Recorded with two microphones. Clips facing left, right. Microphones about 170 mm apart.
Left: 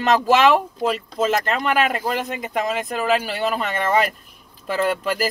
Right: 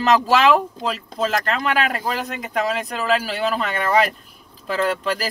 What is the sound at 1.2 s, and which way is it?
Speech, centre (ahead or behind).